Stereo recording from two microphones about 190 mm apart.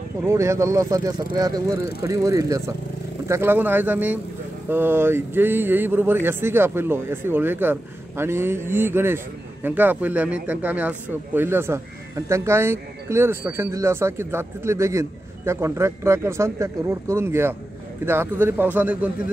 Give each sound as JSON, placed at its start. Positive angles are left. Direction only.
{"t": 0.2, "sound": "speech", "side_deg": -15}